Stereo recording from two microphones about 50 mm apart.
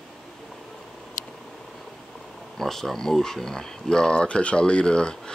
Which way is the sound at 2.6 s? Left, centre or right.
Centre.